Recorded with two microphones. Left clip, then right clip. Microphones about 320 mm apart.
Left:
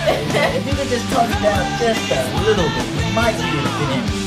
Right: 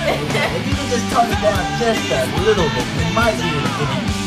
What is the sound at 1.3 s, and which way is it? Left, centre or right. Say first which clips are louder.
Music: even; centre.